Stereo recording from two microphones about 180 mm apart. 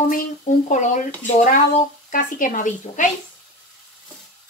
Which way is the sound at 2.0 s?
45° left (ahead or behind).